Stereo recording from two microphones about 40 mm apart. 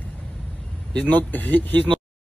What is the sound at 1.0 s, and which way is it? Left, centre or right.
Speech, left.